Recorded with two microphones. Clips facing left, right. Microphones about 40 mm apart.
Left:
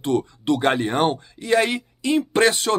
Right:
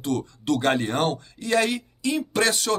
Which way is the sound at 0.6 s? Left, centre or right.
Centre.